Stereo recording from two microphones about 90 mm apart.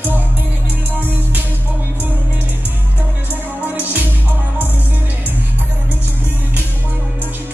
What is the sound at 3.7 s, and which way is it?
Music, 20° right (ahead or behind).